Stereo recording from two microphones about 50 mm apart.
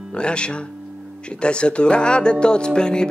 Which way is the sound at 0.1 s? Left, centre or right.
Left.